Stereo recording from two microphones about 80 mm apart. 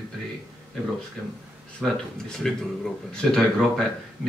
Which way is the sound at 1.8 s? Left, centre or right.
Centre.